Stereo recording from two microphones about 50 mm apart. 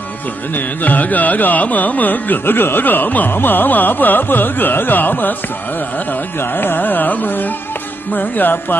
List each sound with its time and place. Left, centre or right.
0.6 s carnatic music: left
6.4 s carnatic music: left